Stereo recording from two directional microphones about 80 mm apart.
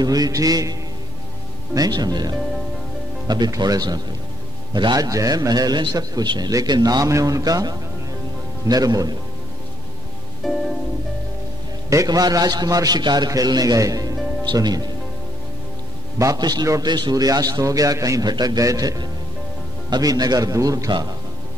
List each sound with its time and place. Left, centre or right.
0.0 s a man's voice: right
7.1 s a man's voice: right
10.4 s music: centre
11.9 s a man's voice: right
13.0 s a man's voice: right
14.5 s speech: right
16.3 s a man's voice: right
18.2 s a man's voice: right